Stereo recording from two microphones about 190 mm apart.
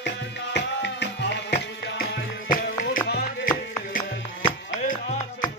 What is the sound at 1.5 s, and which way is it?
Music, 50° left (ahead or behind).